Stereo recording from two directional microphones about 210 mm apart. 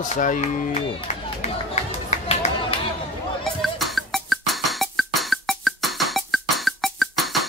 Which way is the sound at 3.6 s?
Centre (ahead or behind).